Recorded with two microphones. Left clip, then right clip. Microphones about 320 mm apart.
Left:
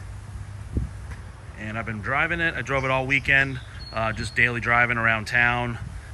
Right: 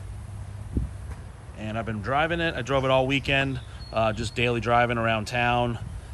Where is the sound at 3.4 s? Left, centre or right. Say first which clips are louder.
Even; centre.